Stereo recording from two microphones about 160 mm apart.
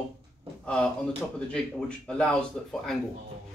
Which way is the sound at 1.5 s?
5° left (ahead or behind).